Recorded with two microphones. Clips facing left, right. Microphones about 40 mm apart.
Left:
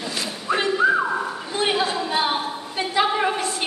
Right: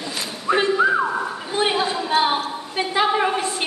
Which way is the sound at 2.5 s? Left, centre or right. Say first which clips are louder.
Right 2 dB; centre.